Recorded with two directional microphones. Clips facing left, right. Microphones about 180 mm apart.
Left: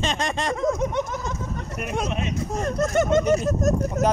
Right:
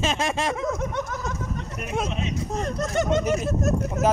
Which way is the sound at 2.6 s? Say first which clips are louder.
Left 4 dB; 50° left (ahead or behind).